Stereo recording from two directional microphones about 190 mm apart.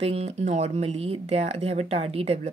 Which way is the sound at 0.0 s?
35° right (ahead or behind).